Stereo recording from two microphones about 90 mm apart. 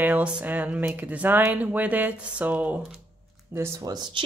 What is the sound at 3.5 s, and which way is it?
Speech, 35° right (ahead or behind).